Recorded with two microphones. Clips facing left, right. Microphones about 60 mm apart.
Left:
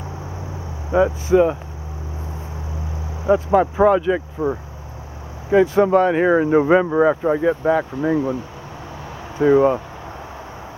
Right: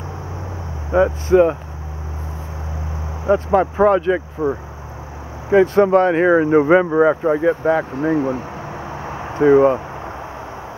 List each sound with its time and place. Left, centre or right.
0.9 s speech: centre
3.5 s speech: centre
7.9 s speech: right
8.9 s a sound: right
9.4 s speech: centre